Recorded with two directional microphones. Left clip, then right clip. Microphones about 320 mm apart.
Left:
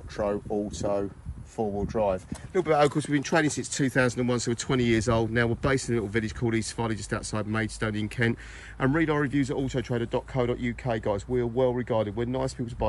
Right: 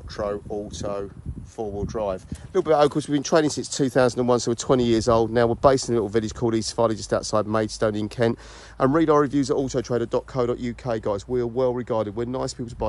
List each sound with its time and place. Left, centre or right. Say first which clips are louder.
0.2 s speech: even; centre
10.3 s speech: right 3 dB; right